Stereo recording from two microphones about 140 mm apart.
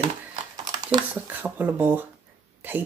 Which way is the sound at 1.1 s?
10° right (ahead or behind).